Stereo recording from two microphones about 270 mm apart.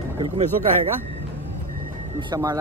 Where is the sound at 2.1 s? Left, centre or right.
Centre.